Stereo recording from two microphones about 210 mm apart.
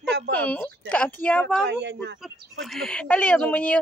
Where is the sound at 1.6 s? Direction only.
55° right (ahead or behind).